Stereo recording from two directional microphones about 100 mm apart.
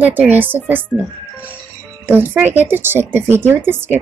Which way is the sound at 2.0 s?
20° right (ahead or behind).